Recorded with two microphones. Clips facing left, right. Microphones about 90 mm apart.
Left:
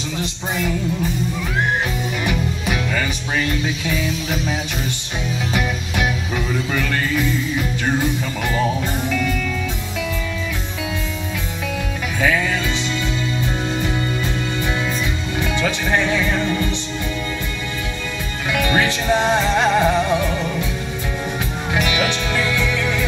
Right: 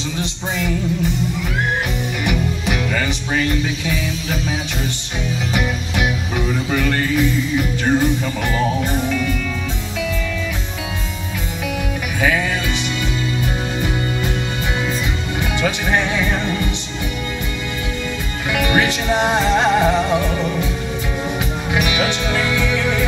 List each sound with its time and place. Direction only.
2.2 s music: 20° right (ahead or behind)
18.5 s music: 20° right (ahead or behind)
21.7 s music: 20° right (ahead or behind)